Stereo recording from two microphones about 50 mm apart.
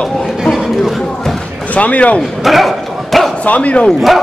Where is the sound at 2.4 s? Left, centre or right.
Centre.